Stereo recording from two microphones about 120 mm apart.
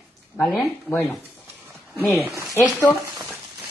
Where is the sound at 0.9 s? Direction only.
15° left (ahead or behind).